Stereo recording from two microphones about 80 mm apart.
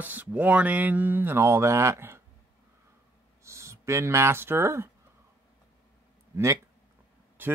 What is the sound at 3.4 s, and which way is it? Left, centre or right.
Speech, right.